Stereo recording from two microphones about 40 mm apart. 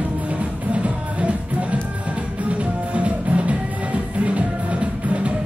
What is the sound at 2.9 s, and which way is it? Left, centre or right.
Music, right.